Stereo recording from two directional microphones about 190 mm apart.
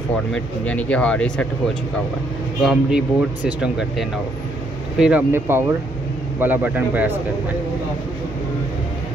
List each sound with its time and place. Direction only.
0.3 s speech: 5° left (ahead or behind)
2.6 s speech: centre (ahead or behind)
4.9 s a man's voice: 5° right (ahead or behind)